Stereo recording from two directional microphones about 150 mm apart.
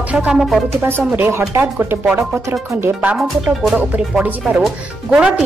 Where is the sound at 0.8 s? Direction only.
15° right (ahead or behind).